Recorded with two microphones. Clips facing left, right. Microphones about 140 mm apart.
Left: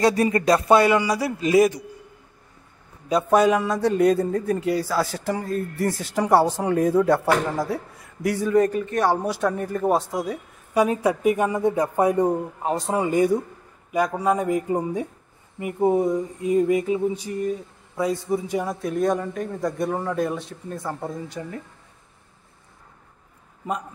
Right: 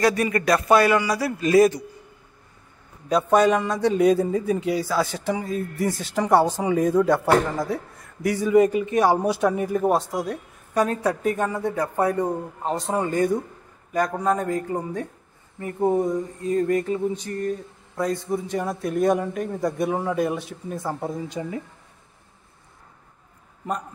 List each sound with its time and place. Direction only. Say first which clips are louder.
0.0 s a man's voice: left 2 dB; 30° left (ahead or behind)
3.1 s speech: even; 5° left (ahead or behind); by 21.5 s 15° right (ahead or behind)